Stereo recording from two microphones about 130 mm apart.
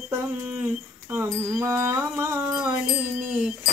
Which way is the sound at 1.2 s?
20° right (ahead or behind).